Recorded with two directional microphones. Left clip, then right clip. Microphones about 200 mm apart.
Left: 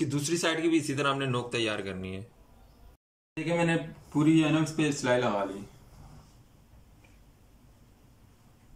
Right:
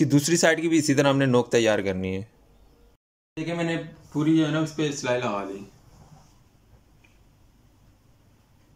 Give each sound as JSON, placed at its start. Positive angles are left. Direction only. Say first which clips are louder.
{"t": 0.0, "sound": "speech", "louder": "right 9 dB", "side_deg": -35}
{"t": 3.3, "sound": "speech", "louder": "even", "side_deg": 0}